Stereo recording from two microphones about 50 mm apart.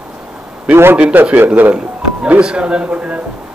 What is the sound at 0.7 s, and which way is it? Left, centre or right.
Speech, right.